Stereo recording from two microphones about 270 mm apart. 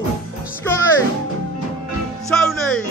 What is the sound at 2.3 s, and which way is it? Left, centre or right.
Music, centre.